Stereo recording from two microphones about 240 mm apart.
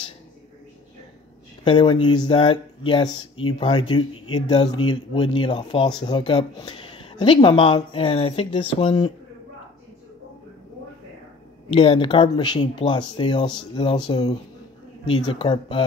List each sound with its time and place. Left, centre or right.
1.6 s speech: centre
11.7 s speech: left